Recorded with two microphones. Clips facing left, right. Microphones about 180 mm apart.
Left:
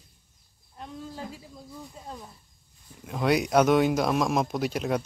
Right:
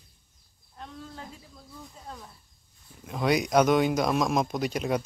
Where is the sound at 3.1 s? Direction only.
5° left (ahead or behind).